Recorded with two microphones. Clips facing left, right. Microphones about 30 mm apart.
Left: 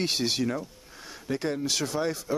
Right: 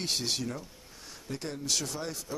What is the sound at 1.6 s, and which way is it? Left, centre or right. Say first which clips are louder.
Speech: left 6 dB; centre.